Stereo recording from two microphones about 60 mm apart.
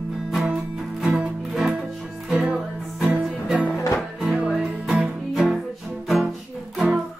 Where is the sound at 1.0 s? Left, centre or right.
Centre.